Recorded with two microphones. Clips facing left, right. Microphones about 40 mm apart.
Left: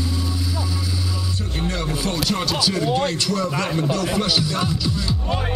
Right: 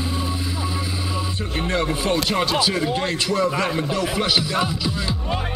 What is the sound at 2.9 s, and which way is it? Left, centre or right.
Speech, centre.